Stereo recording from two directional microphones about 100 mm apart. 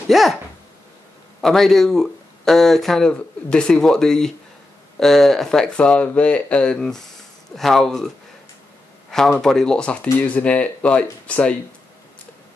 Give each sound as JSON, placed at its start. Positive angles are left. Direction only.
{"t": 0.1, "sound": "speech", "side_deg": 0}
{"t": 1.4, "sound": "speech", "side_deg": 5}
{"t": 9.4, "sound": "speech", "side_deg": 5}